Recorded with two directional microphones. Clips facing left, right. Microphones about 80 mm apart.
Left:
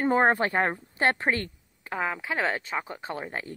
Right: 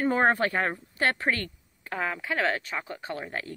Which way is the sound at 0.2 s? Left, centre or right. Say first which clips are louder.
Left 1 dB; left.